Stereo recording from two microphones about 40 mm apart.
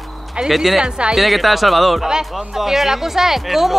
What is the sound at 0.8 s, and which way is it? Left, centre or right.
Speech, right.